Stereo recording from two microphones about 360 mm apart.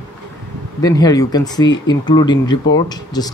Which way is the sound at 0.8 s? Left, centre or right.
Centre.